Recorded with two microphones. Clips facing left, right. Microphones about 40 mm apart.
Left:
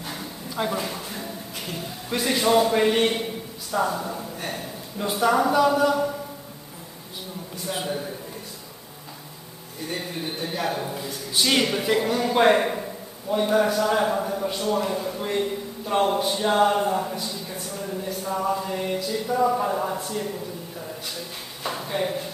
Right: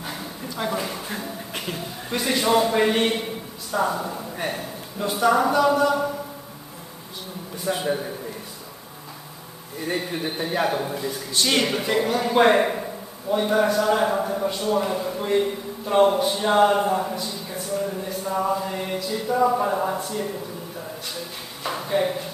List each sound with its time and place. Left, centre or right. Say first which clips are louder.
0.0 s a sound: right 2 dB; centre
0.7 s a man's voice: right 2 dB; centre
1.8 s a man's voice: left 4 dB; centre
4.9 s a man's voice: right 1 dB; centre
7.7 s a man's voice: right 4 dB; centre
9.8 s speech: right 4 dB; centre
11.0 s a man's voice: right 1 dB; centre
21.6 s a man's voice: right 3 dB; centre